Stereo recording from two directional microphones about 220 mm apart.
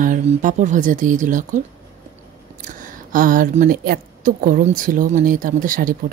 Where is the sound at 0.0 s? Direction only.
35° right (ahead or behind).